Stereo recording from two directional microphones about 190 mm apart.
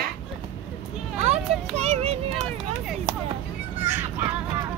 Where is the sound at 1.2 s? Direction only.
35° right (ahead or behind).